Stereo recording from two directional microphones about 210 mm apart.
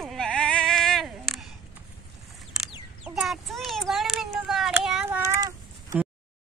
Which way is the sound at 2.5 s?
5° right (ahead or behind).